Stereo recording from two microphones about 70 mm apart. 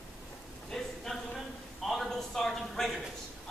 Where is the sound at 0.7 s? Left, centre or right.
Centre.